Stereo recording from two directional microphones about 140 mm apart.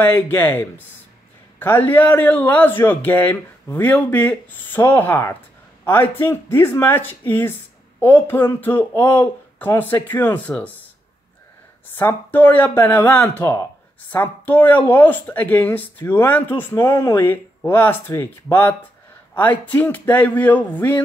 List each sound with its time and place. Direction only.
0.0 s speech: 15° left (ahead or behind)
11.9 s speech: 15° left (ahead or behind)